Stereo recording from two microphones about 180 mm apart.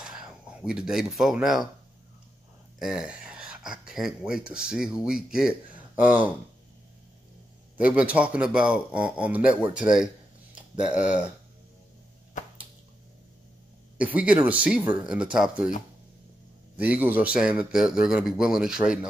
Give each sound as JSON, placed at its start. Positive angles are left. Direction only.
{"t": 0.0, "sound": "speech", "side_deg": -5}
{"t": 2.8, "sound": "speech", "side_deg": -5}
{"t": 7.8, "sound": "a man's voice", "side_deg": -5}
{"t": 13.9, "sound": "a man's voice", "side_deg": -10}
{"t": 16.7, "sound": "a man's voice", "side_deg": -10}